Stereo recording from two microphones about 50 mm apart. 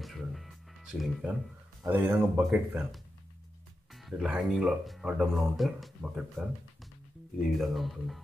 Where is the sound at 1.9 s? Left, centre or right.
Right.